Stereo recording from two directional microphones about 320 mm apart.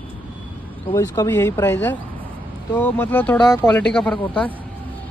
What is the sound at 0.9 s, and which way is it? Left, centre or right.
Speech, centre.